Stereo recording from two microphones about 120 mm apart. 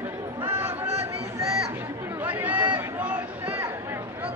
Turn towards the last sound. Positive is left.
turn(degrees=-15)  # may be behind; listen again after turning